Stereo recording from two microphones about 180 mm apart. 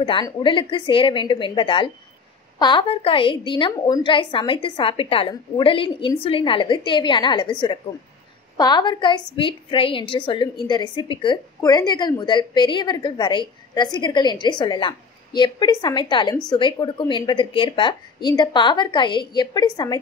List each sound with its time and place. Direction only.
0.0 s a woman's voice: 30° left (ahead or behind)
8.5 s a woman's voice: 25° left (ahead or behind)